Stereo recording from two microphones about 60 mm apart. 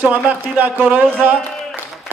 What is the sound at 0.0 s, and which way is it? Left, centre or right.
A man's voice, right.